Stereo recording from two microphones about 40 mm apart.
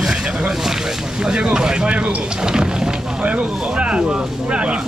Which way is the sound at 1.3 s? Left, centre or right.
Right.